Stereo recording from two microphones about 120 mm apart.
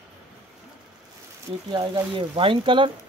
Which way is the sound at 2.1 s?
45° right (ahead or behind).